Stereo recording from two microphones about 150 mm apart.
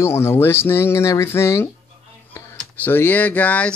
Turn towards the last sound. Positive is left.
turn(degrees=10)  # may be behind; listen again after turning